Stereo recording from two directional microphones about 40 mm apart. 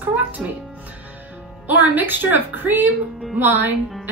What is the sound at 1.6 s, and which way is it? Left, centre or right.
A woman's voice, right.